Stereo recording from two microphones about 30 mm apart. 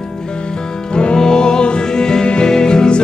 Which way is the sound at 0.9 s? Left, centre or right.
Left.